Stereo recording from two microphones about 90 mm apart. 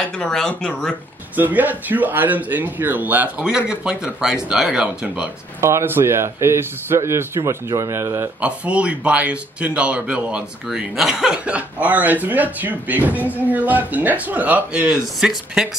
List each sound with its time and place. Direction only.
0.2 s speech: 10° left (ahead or behind)
1.3 s speech: 20° right (ahead or behind)
5.6 s a man's voice: 30° right (ahead or behind)
8.4 s speech: 15° right (ahead or behind)